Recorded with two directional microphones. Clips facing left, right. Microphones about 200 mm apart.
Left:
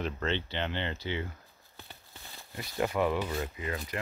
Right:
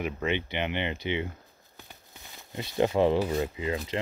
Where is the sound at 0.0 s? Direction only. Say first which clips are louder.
Right 3 dB; 15° right (ahead or behind).